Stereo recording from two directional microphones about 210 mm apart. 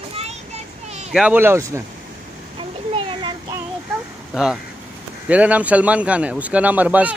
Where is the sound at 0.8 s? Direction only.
30° right (ahead or behind).